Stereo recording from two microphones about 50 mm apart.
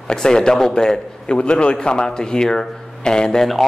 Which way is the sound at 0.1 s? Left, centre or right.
Centre.